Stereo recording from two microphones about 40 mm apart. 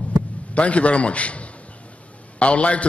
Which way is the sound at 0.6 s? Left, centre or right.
Left.